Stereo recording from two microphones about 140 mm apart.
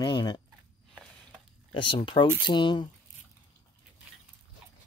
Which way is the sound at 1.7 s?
35° left (ahead or behind).